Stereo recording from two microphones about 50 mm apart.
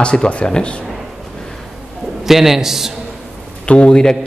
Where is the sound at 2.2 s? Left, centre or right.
Centre.